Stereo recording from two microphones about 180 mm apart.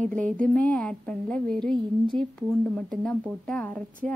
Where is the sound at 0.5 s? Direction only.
5° left (ahead or behind).